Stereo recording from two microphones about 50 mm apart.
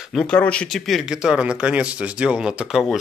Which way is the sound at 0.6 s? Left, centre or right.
Centre.